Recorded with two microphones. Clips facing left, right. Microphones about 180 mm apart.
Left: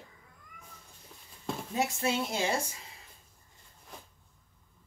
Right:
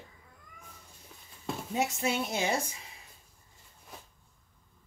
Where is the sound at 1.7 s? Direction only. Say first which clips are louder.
Even; 20° right (ahead or behind).